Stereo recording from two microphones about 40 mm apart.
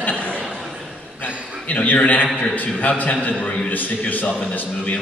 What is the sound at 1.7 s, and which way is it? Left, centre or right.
A man's voice, left.